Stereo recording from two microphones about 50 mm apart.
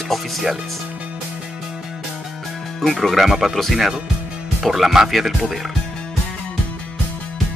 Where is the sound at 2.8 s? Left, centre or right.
Centre.